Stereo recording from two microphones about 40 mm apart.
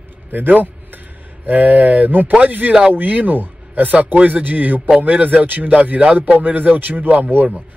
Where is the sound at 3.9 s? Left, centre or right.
Right.